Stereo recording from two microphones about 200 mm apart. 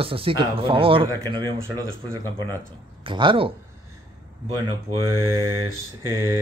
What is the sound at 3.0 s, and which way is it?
Speech, 25° right (ahead or behind).